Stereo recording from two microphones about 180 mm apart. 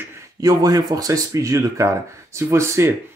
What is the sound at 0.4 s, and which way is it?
Speech, 20° right (ahead or behind).